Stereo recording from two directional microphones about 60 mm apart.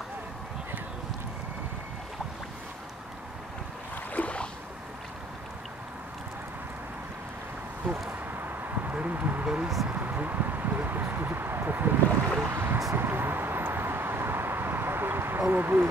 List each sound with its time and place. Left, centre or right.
4.1 s boat: left
8.6 s a sound: right
12.9 s vehicle: right